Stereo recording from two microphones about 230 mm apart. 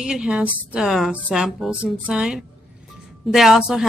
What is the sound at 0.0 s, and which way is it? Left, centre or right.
A woman's voice, centre.